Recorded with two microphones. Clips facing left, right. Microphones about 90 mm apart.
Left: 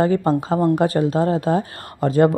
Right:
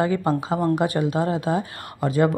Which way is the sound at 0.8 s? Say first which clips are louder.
Left 4 dB; 35° left (ahead or behind).